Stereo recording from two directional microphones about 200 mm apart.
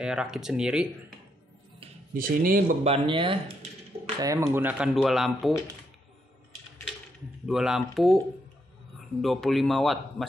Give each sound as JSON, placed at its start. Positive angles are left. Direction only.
{"t": 0.0, "sound": "speech", "side_deg": -5}
{"t": 2.1, "sound": "speech", "side_deg": -45}
{"t": 2.8, "sound": "speech", "side_deg": -30}
{"t": 4.2, "sound": "speech", "side_deg": -15}
{"t": 7.4, "sound": "speech", "side_deg": 0}
{"t": 9.2, "sound": "speech", "side_deg": 0}